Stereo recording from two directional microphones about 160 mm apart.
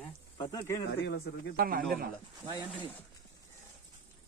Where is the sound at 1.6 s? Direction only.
65° right (ahead or behind).